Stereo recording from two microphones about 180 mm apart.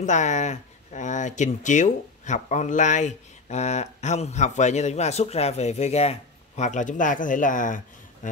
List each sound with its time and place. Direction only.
0.0 s speech: 40° left (ahead or behind)